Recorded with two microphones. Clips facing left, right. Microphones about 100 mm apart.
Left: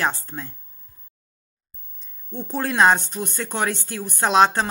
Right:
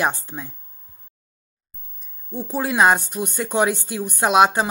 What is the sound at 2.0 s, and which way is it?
Speech, 10° right (ahead or behind).